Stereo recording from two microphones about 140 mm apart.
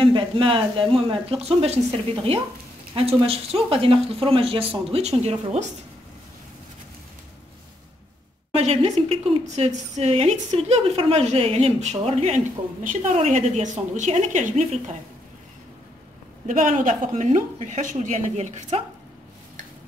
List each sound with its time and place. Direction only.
0.0 s speech: 40° right (ahead or behind)
8.5 s a woman's voice: 50° right (ahead or behind)
16.4 s a woman's voice: 70° right (ahead or behind); by 18.9 s 55° right (ahead or behind)